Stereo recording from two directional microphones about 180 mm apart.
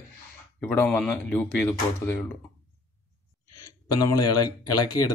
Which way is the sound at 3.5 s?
20° left (ahead or behind).